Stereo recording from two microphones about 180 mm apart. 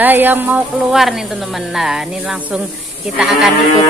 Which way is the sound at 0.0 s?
10° right (ahead or behind).